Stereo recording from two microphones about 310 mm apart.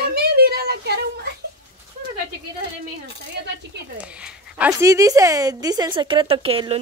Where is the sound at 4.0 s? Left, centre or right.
Centre.